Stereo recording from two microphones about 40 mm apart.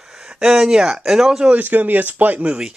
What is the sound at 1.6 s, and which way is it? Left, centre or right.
Speech, right.